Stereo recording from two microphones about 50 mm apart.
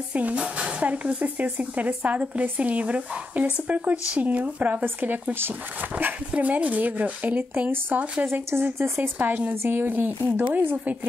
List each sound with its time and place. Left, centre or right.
0.1 s speech: right
6.3 s speech: right
8.3 s speech: right
8.9 s speech: right